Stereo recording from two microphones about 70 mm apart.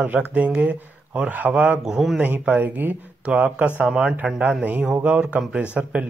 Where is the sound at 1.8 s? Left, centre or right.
Centre.